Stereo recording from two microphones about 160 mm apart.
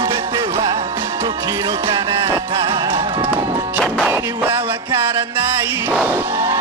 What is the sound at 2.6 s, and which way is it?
Music, 35° right (ahead or behind).